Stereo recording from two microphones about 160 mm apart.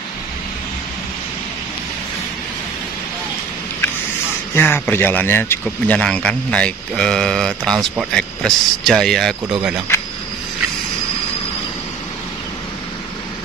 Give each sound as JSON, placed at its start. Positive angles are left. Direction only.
{"t": 4.6, "sound": "speech", "side_deg": 15}
{"t": 9.9, "sound": "insect", "side_deg": 15}